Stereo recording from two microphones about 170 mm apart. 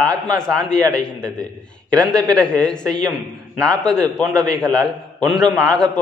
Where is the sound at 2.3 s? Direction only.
5° left (ahead or behind).